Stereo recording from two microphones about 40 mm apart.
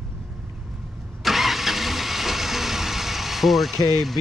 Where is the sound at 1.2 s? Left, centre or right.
Centre.